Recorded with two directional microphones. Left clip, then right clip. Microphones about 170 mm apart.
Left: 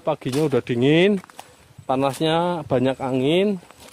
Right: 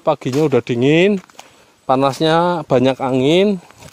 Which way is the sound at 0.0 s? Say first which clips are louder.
Right 6 dB; 40° right (ahead or behind).